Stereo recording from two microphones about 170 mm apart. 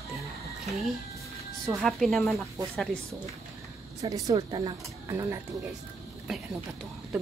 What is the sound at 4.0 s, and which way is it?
Speech, 20° right (ahead or behind).